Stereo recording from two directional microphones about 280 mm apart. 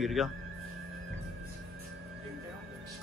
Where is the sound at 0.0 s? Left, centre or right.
Centre.